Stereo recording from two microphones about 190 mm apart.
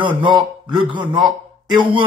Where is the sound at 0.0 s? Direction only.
25° right (ahead or behind).